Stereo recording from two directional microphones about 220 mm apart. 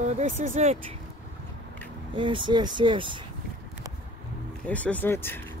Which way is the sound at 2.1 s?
20° right (ahead or behind).